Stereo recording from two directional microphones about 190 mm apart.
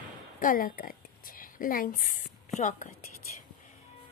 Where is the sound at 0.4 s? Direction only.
45° left (ahead or behind).